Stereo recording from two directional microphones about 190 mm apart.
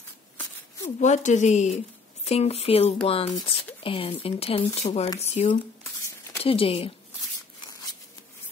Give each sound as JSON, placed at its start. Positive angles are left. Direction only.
{"t": 0.9, "sound": "a woman's voice", "side_deg": 40}